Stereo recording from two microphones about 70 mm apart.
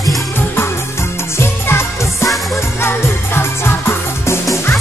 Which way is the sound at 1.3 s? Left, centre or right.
Left.